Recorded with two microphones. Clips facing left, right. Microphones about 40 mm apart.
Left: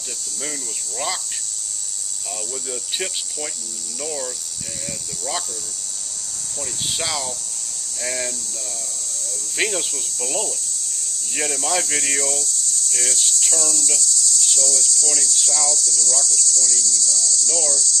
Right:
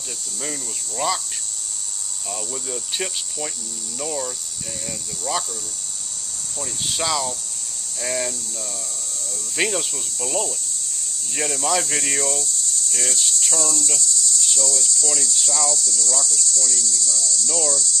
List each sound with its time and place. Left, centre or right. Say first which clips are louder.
0.4 s cricket: right 1 dB; centre
2.5 s cricket: left 1 dB; centre
6.9 s cricket: right 3 dB; centre
9.6 s cricket: even; centre
9.9 s speech: right 1 dB; centre
11.4 s cricket: right 1 dB; centre; by 17.6 s right
17.6 s speech: right 3 dB; right